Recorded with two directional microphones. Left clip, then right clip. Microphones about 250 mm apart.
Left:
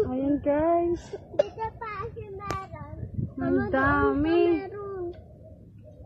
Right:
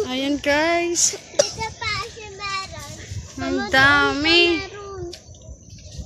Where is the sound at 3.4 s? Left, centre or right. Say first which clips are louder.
Right 8 dB; centre.